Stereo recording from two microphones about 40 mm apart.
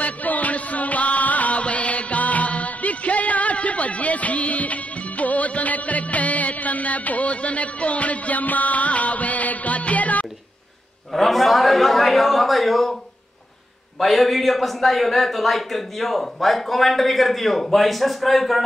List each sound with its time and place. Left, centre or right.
0.0 s music: left
11.1 s a man's voice: centre
13.9 s a man's voice: centre